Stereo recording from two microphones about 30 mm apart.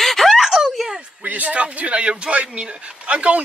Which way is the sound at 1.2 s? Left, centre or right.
Right.